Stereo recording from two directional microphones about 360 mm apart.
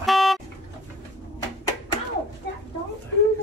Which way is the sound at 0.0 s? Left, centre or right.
Centre.